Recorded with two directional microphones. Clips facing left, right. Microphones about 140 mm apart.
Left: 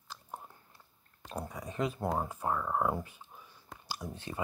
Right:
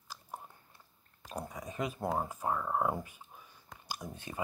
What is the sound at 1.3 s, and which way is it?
Speech, 15° right (ahead or behind).